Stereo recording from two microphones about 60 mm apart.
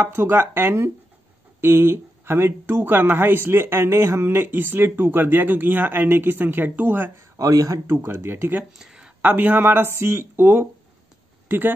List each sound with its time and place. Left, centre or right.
0.0 s a woman's voice: right
7.3 s speech: right
7.8 s a woman's voice: right
8.7 s a sound: centre
9.2 s a woman's voice: right